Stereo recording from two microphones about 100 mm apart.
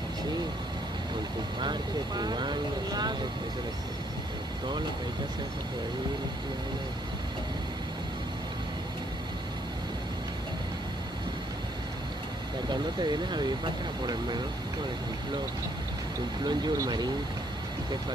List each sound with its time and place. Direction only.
1.6 s speech: 45° right (ahead or behind)
12.6 s speech: 45° right (ahead or behind)
16.4 s speech: 40° right (ahead or behind)